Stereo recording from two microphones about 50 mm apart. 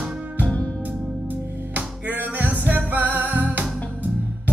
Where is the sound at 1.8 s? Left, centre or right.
Right.